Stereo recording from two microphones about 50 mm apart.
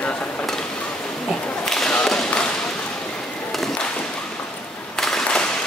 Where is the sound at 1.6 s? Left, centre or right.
Centre.